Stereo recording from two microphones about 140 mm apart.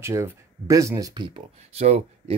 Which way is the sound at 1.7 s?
50° right (ahead or behind).